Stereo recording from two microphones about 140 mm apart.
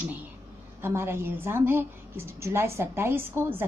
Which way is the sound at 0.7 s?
15° right (ahead or behind).